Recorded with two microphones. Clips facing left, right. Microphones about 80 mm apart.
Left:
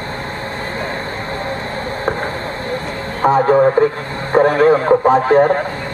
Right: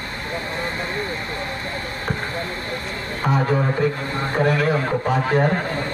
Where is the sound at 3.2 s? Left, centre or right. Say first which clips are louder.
Left 10 dB; left.